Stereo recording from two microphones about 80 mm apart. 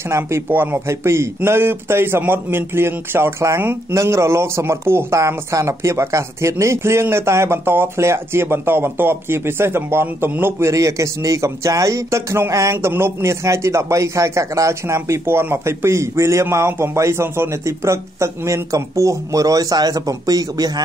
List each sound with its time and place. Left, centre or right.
0.1 s speech: right
12.7 s speech: right